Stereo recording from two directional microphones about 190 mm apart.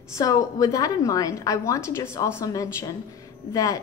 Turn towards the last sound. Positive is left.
turn(degrees=15)  # may be behind; listen again after turning